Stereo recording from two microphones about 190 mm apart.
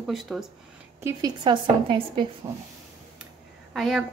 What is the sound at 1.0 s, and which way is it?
A woman's voice, 15° right (ahead or behind).